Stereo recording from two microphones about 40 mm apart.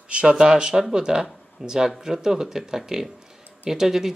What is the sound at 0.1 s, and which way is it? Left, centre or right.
Speech, right.